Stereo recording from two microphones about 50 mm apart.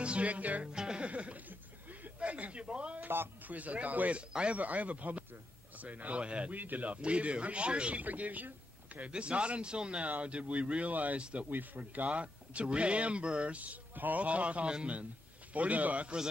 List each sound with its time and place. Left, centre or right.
0.0 s music: right
0.7 s speech: centre
1.0 s speech: right
1.5 s chuckle: right
2.1 s speech: right
3.0 s a man's voice: right
3.4 s speech: right
4.3 s speech: centre
4.6 s speech: right
6.5 s speech: right
8.0 s speech: right
9.0 s speech: right
11.8 s speech: right